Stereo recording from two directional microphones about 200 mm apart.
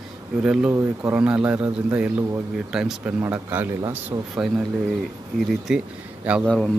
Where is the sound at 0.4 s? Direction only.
5° right (ahead or behind).